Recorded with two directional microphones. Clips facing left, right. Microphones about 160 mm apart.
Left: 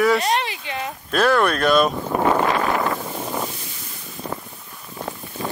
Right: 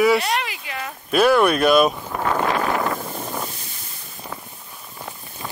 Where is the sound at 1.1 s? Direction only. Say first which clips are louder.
Right 2 dB; 10° right (ahead or behind).